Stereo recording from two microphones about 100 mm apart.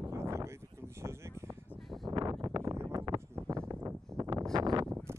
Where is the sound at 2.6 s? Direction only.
25° right (ahead or behind).